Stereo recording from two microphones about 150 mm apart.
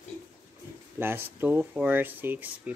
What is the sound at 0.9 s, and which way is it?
Speech, 15° right (ahead or behind).